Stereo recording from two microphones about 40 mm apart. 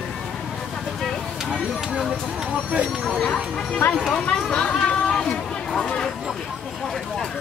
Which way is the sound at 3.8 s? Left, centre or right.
Left.